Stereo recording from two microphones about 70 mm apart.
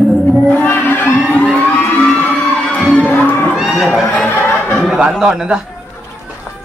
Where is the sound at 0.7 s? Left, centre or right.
Left.